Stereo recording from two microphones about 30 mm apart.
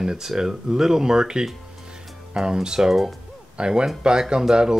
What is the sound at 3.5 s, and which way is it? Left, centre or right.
Speech, right.